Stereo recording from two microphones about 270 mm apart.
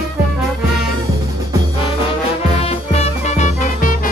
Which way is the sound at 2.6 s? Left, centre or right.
Left.